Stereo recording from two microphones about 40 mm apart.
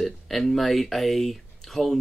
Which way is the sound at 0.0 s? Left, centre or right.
Centre.